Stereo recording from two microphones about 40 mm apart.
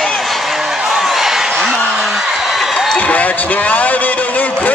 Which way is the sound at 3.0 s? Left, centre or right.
Left.